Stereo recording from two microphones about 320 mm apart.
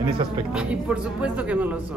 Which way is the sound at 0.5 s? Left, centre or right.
Centre.